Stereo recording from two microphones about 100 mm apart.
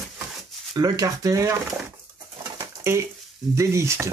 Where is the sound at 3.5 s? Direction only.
30° right (ahead or behind).